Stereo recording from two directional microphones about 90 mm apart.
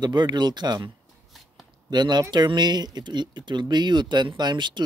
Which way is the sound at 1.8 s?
50° right (ahead or behind).